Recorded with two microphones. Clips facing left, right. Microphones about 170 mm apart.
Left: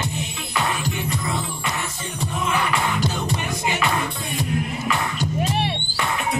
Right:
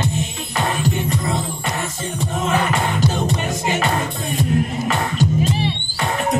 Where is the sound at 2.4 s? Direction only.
45° right (ahead or behind).